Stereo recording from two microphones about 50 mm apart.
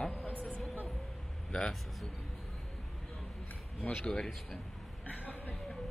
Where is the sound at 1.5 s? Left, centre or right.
Centre.